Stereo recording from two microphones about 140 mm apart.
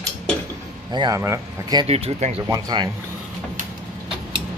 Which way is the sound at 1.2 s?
20° right (ahead or behind).